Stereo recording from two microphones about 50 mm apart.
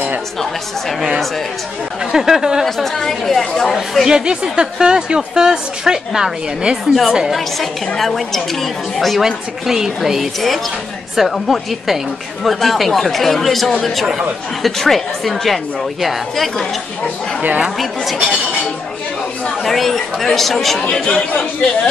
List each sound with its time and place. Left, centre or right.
2.1 s a woman's voice: centre
2.6 s a woman's voice: centre
17.7 s a woman's voice: centre